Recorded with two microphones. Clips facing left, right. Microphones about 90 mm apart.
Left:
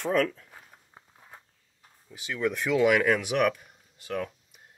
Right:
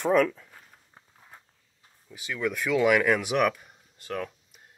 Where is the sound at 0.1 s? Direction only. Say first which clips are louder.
Right 3 dB; 5° right (ahead or behind).